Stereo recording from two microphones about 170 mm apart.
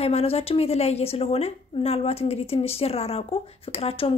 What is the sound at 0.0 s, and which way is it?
A woman's voice, 35° left (ahead or behind).